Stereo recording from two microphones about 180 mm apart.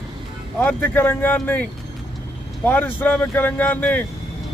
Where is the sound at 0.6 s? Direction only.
10° left (ahead or behind).